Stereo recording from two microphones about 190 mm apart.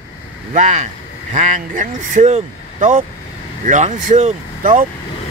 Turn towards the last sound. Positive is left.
turn(degrees=-45)  # may be behind; listen again after turning